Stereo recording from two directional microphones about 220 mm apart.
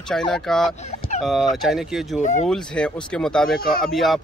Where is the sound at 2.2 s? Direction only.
35° left (ahead or behind).